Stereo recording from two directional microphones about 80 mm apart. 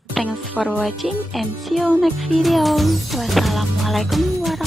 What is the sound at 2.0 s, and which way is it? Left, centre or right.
Music, centre.